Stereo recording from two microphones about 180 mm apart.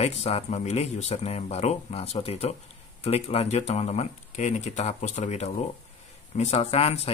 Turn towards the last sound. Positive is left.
turn(degrees=35)  # may be behind; listen again after turning